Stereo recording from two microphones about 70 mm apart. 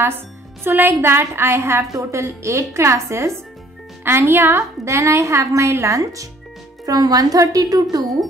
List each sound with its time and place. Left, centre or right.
0.7 s a woman's voice: right
6.9 s a woman's voice: right